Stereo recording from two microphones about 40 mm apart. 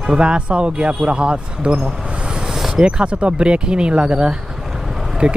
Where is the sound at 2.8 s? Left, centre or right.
Right.